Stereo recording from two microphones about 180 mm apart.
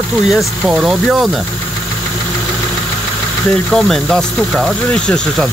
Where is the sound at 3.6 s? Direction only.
Centre (ahead or behind).